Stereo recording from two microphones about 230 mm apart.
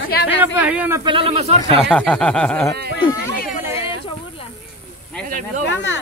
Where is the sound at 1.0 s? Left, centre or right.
Right.